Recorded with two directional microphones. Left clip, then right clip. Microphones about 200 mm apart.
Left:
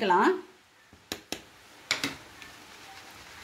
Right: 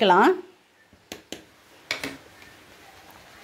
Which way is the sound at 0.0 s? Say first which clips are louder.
Right 6 dB; 45° right (ahead or behind).